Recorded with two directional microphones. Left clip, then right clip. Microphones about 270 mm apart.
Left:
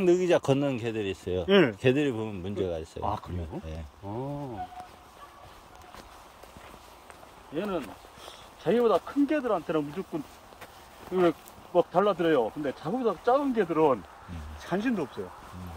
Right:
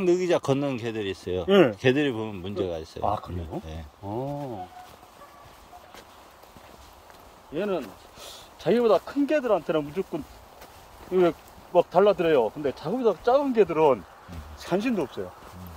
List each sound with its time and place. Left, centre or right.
0.0 s speech: centre
1.4 s speech: right
1.8 s speech: centre
3.0 s speech: right
7.5 s speech: right
11.2 s speech: right